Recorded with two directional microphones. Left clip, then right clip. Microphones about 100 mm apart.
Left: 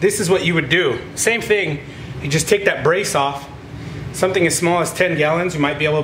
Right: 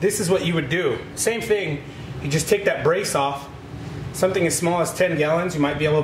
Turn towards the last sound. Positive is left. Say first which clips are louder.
# left 3 dB
turn(degrees=15)  # may be behind; listen again after turning